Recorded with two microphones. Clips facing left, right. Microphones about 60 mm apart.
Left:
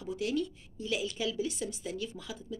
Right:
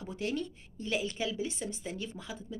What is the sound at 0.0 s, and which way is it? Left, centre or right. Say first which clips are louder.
Speech: left 3 dB; right.